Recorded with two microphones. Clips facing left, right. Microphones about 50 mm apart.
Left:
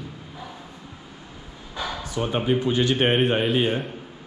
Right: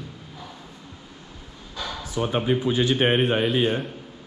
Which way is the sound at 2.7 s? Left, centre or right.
Left.